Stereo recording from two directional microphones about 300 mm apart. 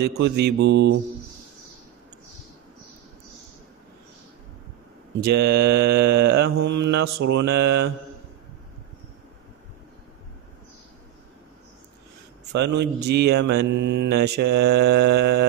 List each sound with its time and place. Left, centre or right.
0.0 s mantra: right
5.4 s mantra: right
7.6 s mantra: right
12.5 s mantra: right
14.4 s mantra: right
14.9 s mantra: right